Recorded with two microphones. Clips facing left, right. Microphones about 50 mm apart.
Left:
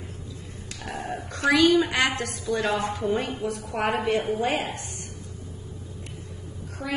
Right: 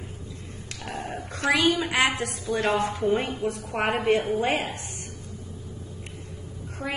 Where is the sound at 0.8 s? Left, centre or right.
Right.